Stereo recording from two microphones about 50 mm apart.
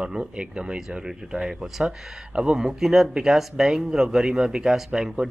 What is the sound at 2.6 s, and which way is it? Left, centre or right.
Speech, centre.